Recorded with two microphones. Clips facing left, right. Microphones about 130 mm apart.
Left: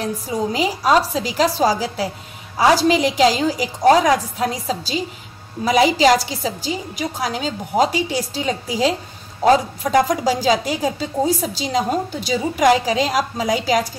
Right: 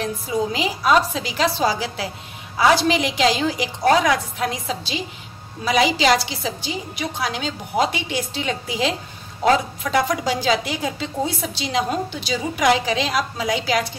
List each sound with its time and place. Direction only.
0.0 s a woman's voice: 40° left (ahead or behind)